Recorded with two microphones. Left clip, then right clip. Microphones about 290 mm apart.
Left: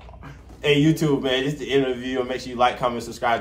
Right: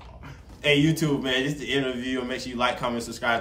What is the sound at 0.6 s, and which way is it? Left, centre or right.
A man's voice, centre.